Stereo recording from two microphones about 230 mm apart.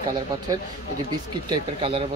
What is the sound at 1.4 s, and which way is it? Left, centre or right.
Speech, right.